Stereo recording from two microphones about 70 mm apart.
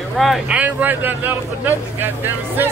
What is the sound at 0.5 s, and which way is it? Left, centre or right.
Speech, right.